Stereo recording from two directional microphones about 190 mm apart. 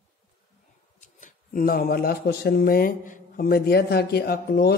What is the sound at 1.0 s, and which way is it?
Speech, 45° left (ahead or behind).